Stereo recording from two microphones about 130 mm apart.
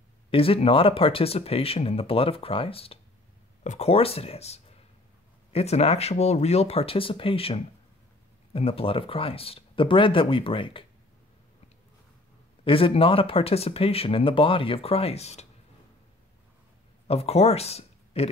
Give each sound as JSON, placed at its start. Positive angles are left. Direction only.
{"t": 0.3, "sound": "speech", "side_deg": 45}
{"t": 3.6, "sound": "speech", "side_deg": 55}
{"t": 12.6, "sound": "speech", "side_deg": 45}
{"t": 17.1, "sound": "speech", "side_deg": 50}